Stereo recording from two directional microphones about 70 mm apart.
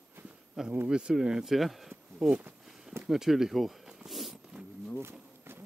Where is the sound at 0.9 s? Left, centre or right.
Centre.